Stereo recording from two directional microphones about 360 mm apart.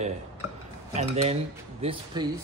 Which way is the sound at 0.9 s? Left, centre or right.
Centre.